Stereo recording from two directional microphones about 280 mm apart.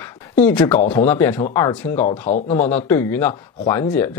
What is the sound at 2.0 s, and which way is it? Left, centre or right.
Speech, left.